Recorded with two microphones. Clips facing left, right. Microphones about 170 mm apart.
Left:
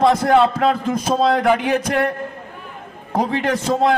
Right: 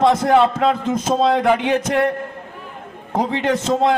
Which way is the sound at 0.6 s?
20° right (ahead or behind).